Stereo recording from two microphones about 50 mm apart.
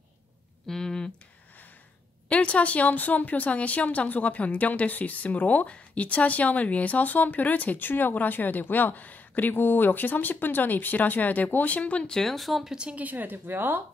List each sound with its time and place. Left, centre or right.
0.7 s a sound: centre
2.2 s speech: left
12.1 s speech: centre
12.9 s speech: right